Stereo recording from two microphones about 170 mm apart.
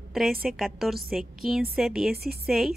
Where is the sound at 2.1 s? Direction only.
65° right (ahead or behind).